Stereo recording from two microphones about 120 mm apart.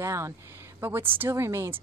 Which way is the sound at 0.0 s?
25° right (ahead or behind).